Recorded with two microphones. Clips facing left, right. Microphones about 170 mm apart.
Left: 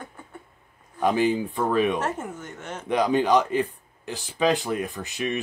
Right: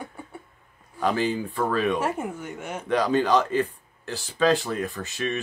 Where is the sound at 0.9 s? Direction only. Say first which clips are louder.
Left 3 dB; 15° left (ahead or behind).